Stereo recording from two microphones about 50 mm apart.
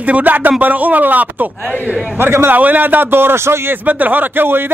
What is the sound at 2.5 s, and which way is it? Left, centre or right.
Speech, right.